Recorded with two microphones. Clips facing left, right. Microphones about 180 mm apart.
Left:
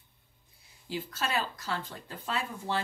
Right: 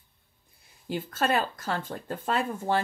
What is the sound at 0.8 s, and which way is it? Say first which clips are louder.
Speech: right 7 dB; 50° right (ahead or behind).